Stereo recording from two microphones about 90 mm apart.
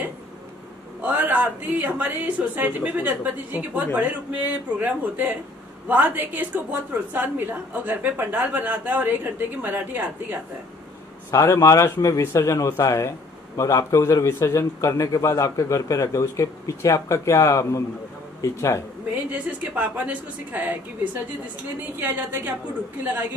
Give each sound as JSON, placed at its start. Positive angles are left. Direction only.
{"t": 1.0, "sound": "a woman's voice", "side_deg": -20}
{"t": 11.2, "sound": "a man's voice", "side_deg": 30}
{"t": 19.3, "sound": "a woman's voice", "side_deg": -15}